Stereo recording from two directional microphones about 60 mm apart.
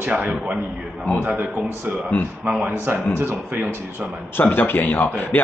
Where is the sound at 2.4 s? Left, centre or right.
Centre.